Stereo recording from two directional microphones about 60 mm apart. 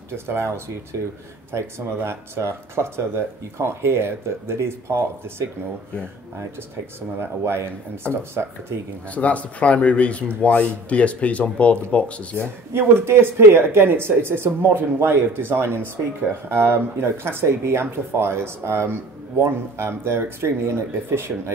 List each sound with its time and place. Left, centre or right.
0.1 s speech: right
2.0 s speech: right
7.2 s speech: right
9.1 s speech: left
12.7 s speech: right